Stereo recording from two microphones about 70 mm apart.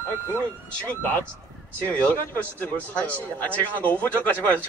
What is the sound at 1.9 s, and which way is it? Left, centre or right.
A man's voice, left.